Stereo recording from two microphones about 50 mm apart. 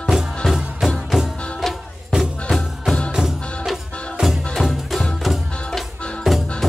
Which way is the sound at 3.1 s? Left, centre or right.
Centre.